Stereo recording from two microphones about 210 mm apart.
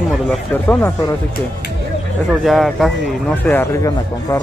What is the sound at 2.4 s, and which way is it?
Speech, centre (ahead or behind).